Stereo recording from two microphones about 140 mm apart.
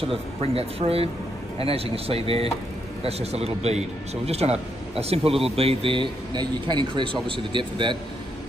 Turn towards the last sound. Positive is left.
turn(degrees=-35)  # may be behind; listen again after turning